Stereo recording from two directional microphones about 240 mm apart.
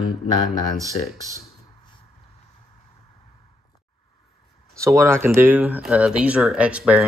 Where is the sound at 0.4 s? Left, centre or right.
Centre.